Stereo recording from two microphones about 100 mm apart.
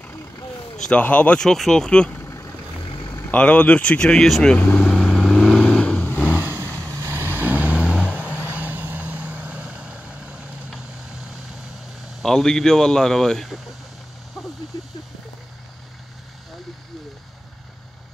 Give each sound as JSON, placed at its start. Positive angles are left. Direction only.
{"t": 0.8, "sound": "speech", "side_deg": 15}
{"t": 2.1, "sound": "vehicle", "side_deg": 30}
{"t": 2.8, "sound": "vehicle", "side_deg": 60}
{"t": 3.3, "sound": "speech", "side_deg": 10}
{"t": 4.8, "sound": "vehicle", "side_deg": 0}
{"t": 6.4, "sound": "vehicle", "side_deg": -25}
{"t": 8.1, "sound": "vehicle", "side_deg": 15}
{"t": 8.5, "sound": "vehicle", "side_deg": -20}
{"t": 12.2, "sound": "speech", "side_deg": 5}